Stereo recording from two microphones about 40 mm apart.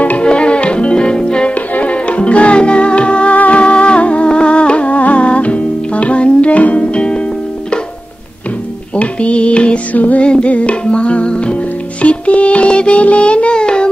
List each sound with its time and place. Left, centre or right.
0.2 s music: left
1.5 s music: left
6.9 s music: left
8.9 s music: left
9.9 s music: left
10.2 s music: left